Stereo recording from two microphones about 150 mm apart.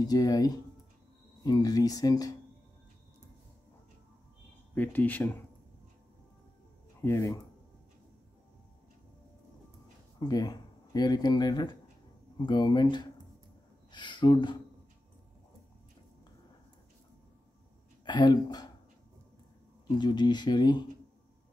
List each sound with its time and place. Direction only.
0.0 s speech: 25° left (ahead or behind)
4.7 s speech: 10° left (ahead or behind)
7.0 s speech: 15° left (ahead or behind)
10.1 s speech: 25° left (ahead or behind)
18.0 s speech: 30° left (ahead or behind)
20.0 s speech: 30° left (ahead or behind)